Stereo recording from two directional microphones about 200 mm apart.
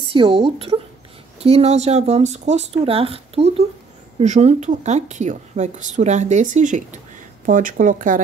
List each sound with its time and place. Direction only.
0.1 s a woman's voice: 25° right (ahead or behind); by 8.2 s 40° right (ahead or behind)